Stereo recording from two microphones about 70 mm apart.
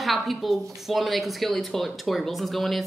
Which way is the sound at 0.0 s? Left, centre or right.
Centre.